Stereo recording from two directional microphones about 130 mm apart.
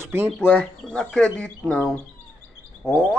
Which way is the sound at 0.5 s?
5° left (ahead or behind).